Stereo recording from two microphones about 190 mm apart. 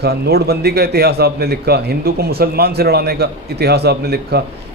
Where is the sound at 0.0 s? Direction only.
55° right (ahead or behind).